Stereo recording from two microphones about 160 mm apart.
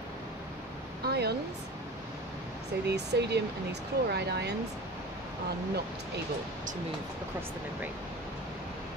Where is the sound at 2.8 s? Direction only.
90° right.